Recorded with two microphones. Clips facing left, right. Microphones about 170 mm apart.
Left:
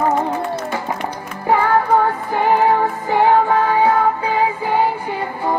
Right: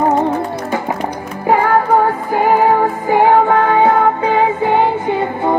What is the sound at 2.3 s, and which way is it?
Music, 10° right (ahead or behind).